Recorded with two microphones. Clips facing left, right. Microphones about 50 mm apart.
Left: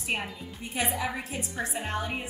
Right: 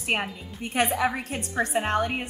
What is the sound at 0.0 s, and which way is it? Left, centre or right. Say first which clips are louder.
A woman's voice: right 4 dB; right.